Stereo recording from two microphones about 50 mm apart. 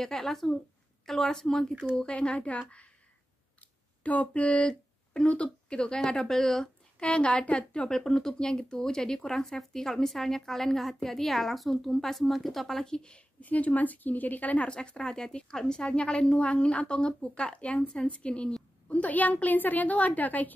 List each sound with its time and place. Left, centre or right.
0.0 s speech: centre
2.0 s speech: left
4.0 s a woman's voice: left; by 6.7 s centre
7.0 s speech: left
8.0 s speech: centre
13.4 s a woman's voice: left